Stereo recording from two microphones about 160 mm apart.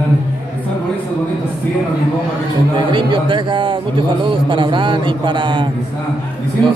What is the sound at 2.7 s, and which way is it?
A man's voice, 30° right (ahead or behind).